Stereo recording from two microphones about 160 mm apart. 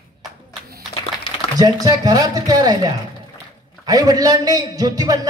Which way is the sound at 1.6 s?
25° right (ahead or behind).